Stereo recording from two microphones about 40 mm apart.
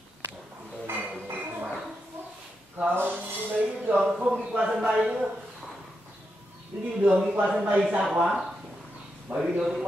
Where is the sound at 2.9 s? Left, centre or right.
Right.